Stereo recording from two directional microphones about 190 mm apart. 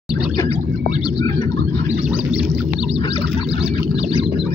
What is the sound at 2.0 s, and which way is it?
Whale vocalization, 5° right (ahead or behind).